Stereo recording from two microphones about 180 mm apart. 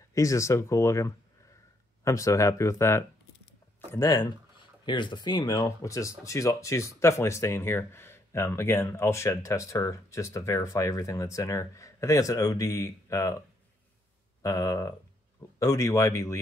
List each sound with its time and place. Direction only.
0.1 s speech: 15° left (ahead or behind)
14.4 s speech: 15° left (ahead or behind)